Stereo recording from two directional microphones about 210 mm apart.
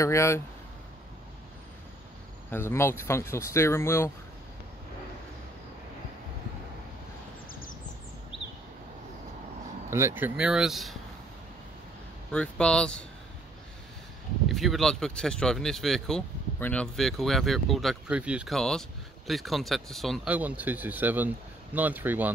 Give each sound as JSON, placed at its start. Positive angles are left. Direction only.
{"t": 0.0, "sound": "speech", "side_deg": 15}
{"t": 2.5, "sound": "speech", "side_deg": 10}
{"t": 9.8, "sound": "speech", "side_deg": -10}
{"t": 12.3, "sound": "speech", "side_deg": 5}
{"t": 14.5, "sound": "speech", "side_deg": 0}